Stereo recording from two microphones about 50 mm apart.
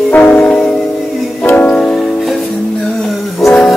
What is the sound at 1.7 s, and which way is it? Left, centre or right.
Music, centre.